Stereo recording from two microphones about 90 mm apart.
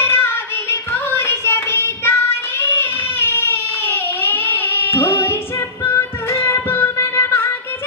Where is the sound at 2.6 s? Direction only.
25° left (ahead or behind).